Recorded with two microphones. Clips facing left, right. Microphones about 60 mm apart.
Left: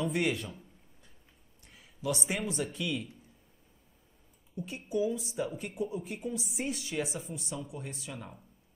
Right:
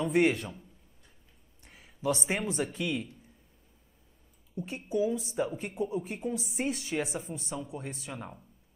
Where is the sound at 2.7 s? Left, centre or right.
Right.